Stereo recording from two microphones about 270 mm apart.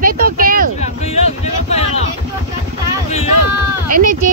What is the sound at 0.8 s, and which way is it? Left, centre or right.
Speech, left.